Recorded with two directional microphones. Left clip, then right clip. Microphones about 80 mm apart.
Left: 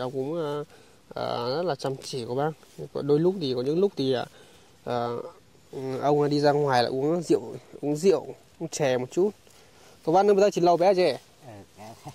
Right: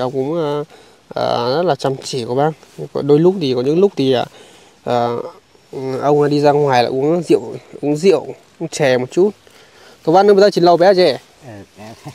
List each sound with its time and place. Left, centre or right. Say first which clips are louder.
0.2 s speech: right 11 dB; right
5.7 s a man's voice: right 9 dB; centre